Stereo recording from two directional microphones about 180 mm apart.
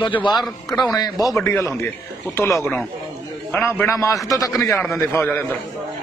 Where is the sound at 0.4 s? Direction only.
20° left (ahead or behind).